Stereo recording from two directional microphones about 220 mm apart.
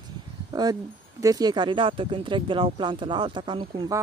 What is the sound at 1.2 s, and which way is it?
Speech, 15° right (ahead or behind).